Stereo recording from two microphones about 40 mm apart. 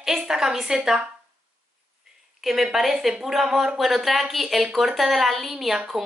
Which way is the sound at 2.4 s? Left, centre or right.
Centre.